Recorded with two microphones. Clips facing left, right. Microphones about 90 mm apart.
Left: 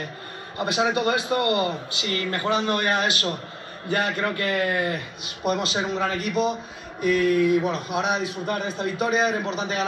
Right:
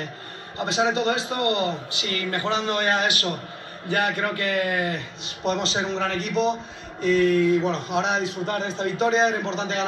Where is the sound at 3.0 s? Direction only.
30° left (ahead or behind).